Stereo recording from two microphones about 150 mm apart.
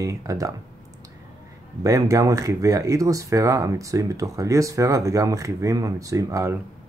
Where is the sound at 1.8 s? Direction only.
20° right (ahead or behind).